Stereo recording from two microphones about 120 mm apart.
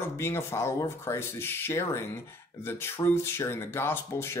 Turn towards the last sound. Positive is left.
turn(degrees=20)  # may be behind; listen again after turning